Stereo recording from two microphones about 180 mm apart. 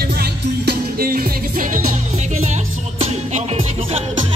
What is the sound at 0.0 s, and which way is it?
Music, 60° right (ahead or behind).